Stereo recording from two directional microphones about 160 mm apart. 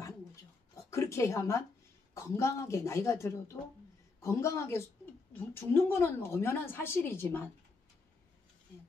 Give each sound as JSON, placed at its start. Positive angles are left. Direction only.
{"t": 0.7, "sound": "a woman's voice", "side_deg": 20}